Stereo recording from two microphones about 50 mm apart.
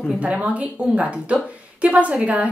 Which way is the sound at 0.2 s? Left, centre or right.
Right.